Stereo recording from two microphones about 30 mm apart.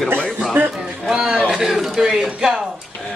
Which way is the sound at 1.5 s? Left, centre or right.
Centre.